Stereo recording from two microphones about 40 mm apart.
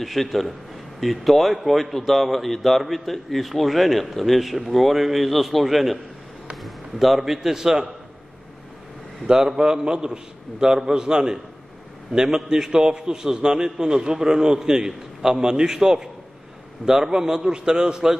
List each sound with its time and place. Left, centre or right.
0.0 s a man's voice: centre
9.3 s a man's voice: centre